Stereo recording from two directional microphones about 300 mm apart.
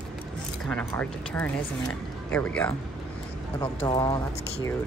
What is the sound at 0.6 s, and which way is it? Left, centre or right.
Speech, centre.